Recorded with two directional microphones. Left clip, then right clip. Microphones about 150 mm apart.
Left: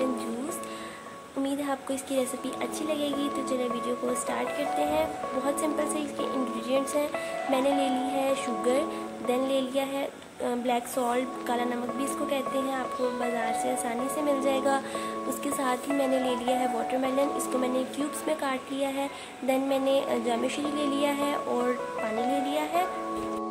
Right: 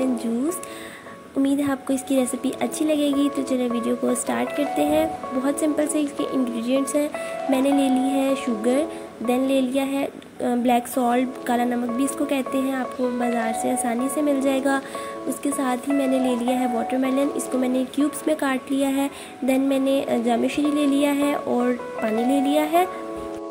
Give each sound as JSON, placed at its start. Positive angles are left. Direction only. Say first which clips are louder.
{"t": 1.4, "sound": "a woman's voice", "louder": "right 7 dB", "side_deg": -30}